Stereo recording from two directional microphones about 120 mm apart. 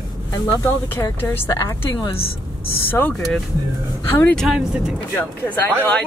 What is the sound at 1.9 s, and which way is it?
Speech, 45° left (ahead or behind).